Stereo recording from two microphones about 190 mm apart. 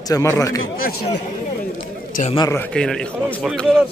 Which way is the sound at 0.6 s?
50° left (ahead or behind).